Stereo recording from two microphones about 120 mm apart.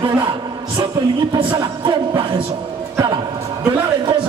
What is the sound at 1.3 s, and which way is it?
A man's voice, 40° right (ahead or behind).